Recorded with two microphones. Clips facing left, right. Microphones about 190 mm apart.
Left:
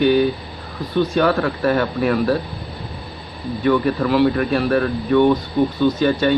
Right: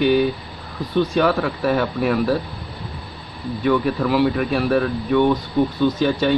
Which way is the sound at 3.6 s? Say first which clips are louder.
Left 2 dB; centre (ahead or behind).